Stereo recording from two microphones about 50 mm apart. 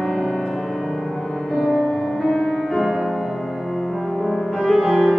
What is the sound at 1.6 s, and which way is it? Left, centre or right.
Music, centre.